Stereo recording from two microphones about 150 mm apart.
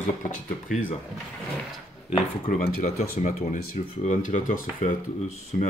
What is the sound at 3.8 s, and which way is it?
Speech, 40° left (ahead or behind).